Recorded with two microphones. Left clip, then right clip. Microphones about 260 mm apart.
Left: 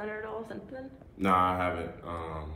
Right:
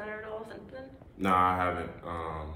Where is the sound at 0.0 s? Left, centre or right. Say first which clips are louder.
Left 2 dB; left.